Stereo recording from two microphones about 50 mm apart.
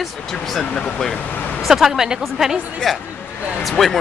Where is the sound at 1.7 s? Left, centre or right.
Centre.